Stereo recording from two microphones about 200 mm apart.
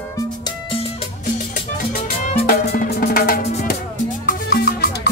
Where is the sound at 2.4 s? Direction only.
45° left (ahead or behind).